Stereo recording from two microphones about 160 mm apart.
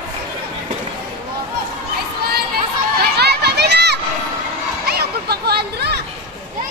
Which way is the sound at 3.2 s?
90° right.